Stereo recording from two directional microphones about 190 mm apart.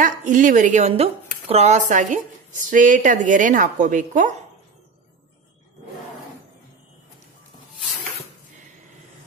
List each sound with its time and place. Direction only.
0.0 s a woman's voice: 45° right (ahead or behind)